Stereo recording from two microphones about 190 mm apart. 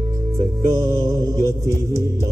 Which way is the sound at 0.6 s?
15° right (ahead or behind).